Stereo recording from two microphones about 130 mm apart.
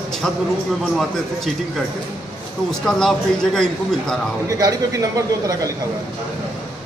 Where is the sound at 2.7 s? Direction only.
5° left (ahead or behind).